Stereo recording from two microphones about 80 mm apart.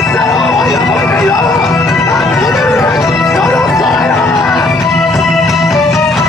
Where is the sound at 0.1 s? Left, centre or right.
Centre.